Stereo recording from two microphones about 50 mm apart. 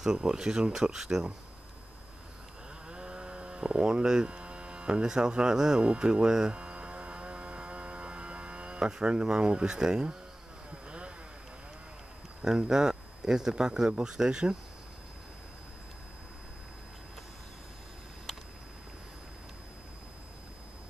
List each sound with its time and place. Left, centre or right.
0.0 s speech: centre
2.9 s sheep: centre
10.9 s a sound: right
12.4 s speech: centre